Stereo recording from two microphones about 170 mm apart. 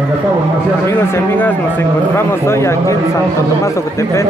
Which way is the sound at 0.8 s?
15° left (ahead or behind).